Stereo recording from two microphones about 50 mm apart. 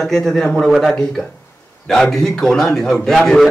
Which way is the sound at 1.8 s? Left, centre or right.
Centre.